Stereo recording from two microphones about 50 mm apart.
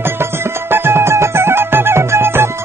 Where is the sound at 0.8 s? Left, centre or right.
Right.